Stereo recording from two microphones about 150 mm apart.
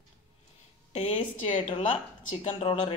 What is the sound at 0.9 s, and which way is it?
Speech, 40° left (ahead or behind).